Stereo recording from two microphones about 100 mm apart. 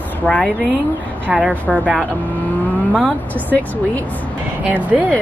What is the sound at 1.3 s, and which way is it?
Speech, 5° right (ahead or behind).